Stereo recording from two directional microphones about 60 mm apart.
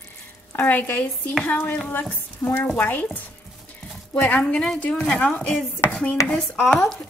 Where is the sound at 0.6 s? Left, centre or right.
Left.